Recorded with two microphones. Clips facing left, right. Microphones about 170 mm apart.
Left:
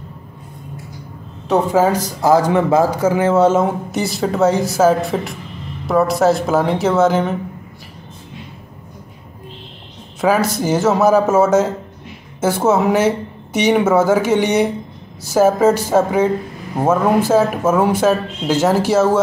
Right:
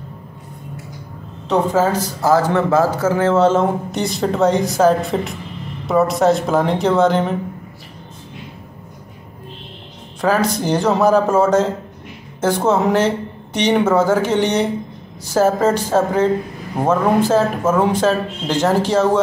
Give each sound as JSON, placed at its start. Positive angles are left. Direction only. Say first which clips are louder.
{"t": 1.5, "sound": "a man's voice", "louder": "left 2 dB", "side_deg": 10}
{"t": 10.2, "sound": "a man's voice", "louder": "left 1 dB", "side_deg": 10}